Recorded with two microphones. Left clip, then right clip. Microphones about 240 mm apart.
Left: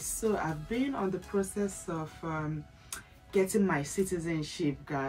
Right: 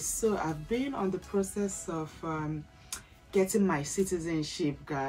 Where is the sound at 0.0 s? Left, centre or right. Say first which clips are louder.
Right 1 dB; centre.